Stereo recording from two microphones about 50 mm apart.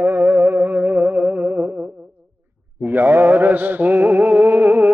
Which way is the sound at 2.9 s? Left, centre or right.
Right.